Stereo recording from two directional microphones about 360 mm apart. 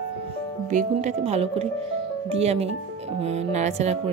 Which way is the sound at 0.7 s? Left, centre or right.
Centre.